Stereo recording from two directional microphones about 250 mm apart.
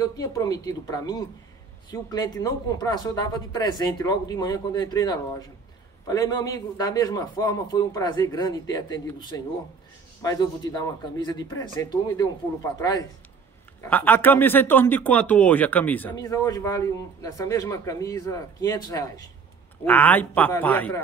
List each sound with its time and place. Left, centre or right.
0.0 s speech: centre
13.7 s speech: centre